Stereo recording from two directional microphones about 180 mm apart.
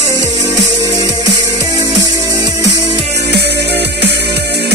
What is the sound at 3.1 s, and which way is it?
Music, 65° right (ahead or behind).